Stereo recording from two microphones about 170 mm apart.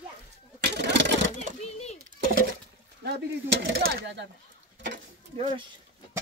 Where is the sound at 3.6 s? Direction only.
90° right.